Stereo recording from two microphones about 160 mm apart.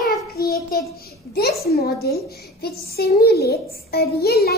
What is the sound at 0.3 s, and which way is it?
Child singing, 80° left.